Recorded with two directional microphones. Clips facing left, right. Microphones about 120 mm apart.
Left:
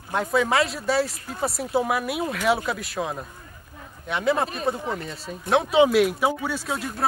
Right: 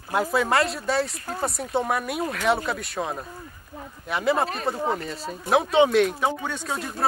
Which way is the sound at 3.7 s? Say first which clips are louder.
Right 6 dB; 35° right (ahead or behind).